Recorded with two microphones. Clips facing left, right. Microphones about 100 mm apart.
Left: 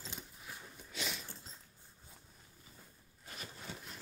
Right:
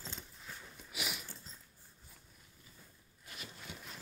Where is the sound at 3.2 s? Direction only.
35° left (ahead or behind).